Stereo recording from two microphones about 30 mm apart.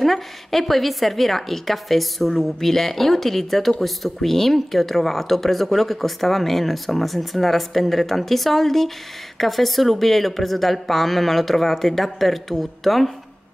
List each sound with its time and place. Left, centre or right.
0.0 s speech: centre